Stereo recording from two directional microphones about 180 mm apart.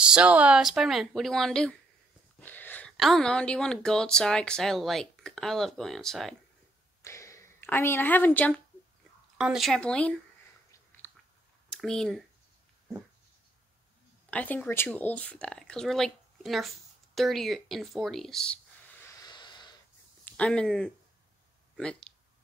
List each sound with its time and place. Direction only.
0.1 s a woman's voice: 5° right (ahead or behind)
2.4 s a sound: 10° left (ahead or behind)
3.0 s a woman's voice: centre (ahead or behind)
7.0 s a sound: 15° left (ahead or behind)
9.4 s a woman's voice: centre (ahead or behind)
11.7 s speech: 5° left (ahead or behind)
14.3 s speech: 10° left (ahead or behind)
19.2 s a sound: 25° left (ahead or behind)
20.2 s speech: 5° left (ahead or behind)